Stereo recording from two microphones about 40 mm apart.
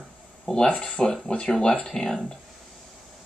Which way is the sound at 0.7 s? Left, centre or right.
Left.